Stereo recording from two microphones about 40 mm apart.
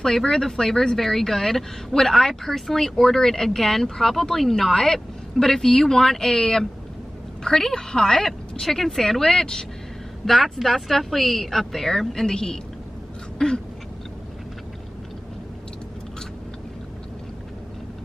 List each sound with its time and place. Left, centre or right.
0.0 s speech: centre
10.2 s speech: centre
13.4 s a sound: centre